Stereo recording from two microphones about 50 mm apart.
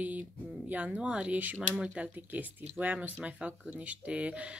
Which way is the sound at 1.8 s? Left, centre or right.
Right.